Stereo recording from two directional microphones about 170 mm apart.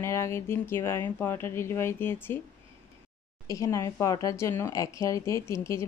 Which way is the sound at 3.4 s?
20° left (ahead or behind).